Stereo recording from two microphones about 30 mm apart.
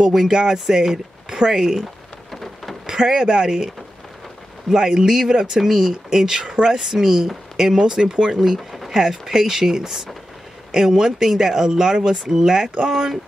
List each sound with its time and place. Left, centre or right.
0.0 s speech: centre
2.3 s rain: centre
2.9 s speech: right
8.5 s a sound: centre
8.9 s speech: centre